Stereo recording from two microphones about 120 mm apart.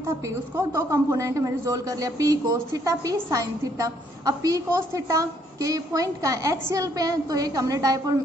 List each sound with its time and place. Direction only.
0.6 s a woman's voice: 25° right (ahead or behind)